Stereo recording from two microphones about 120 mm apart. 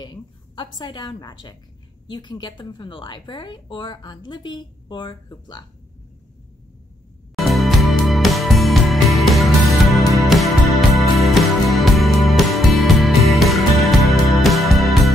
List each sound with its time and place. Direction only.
0.0 s a woman's voice: 35° left (ahead or behind)
7.3 s music: centre (ahead or behind)